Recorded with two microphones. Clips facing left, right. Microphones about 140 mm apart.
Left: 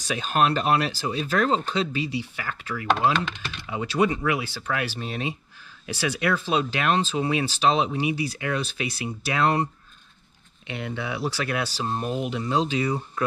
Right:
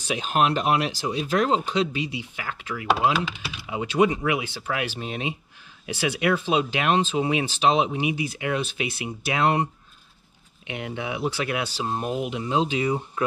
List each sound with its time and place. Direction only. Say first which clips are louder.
0.7 s speech: even; 15° right (ahead or behind)
10.7 s speech: even; 15° right (ahead or behind)